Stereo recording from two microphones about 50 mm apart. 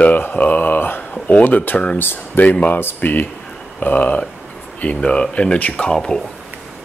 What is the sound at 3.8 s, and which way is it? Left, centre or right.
Speech, left.